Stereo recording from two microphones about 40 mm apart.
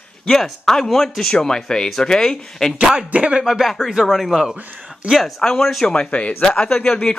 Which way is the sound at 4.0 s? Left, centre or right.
Centre.